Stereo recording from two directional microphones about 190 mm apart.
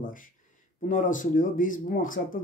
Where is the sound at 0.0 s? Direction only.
45° left (ahead or behind).